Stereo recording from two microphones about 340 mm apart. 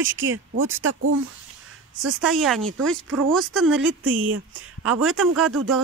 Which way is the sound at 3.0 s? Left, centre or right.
Right.